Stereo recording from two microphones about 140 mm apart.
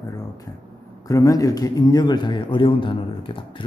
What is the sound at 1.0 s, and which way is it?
A man's voice, 25° left (ahead or behind).